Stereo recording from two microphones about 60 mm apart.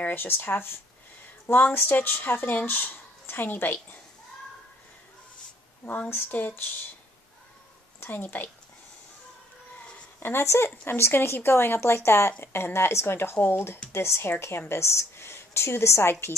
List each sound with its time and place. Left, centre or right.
0.0 s speech: left
5.9 s speech: left
8.0 s speech: left
10.2 s a woman's voice: left